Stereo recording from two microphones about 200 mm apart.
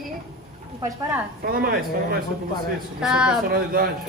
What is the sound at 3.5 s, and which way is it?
Speech, 45° right (ahead or behind).